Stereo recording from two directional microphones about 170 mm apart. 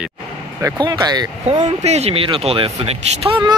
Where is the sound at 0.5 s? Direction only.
20° right (ahead or behind).